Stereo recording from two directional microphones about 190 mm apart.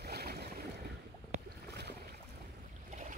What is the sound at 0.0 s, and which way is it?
Boat, 55° right (ahead or behind).